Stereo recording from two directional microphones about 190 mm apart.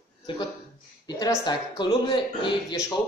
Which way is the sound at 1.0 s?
20° left (ahead or behind).